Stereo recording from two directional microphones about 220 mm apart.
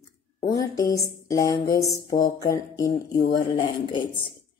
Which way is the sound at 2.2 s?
15° left (ahead or behind).